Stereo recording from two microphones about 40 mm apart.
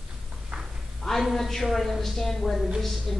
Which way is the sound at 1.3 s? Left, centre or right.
Centre.